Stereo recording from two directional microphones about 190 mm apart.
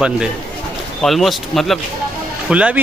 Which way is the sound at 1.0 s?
Centre (ahead or behind).